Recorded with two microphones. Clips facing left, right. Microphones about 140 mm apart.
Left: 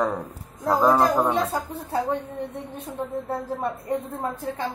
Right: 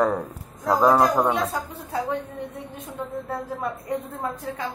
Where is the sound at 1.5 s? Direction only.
30° left (ahead or behind).